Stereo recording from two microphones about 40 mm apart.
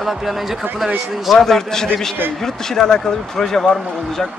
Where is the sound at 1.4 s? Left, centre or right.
Centre.